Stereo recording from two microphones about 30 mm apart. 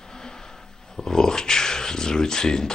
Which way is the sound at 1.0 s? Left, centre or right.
Left.